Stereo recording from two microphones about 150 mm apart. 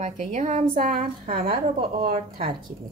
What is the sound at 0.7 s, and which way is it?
Speech, 70° right (ahead or behind).